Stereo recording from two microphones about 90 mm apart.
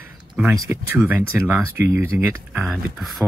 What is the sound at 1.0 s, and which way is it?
Speech, 20° right (ahead or behind).